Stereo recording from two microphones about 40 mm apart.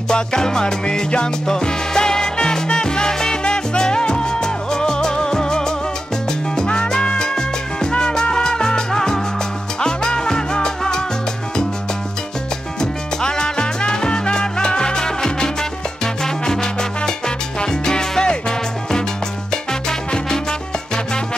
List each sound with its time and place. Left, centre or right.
0.1 s music: centre
12.8 s music: centre
19.5 s music: centre